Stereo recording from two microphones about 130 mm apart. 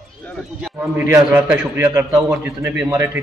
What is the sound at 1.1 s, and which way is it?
A man's voice, 15° right (ahead or behind).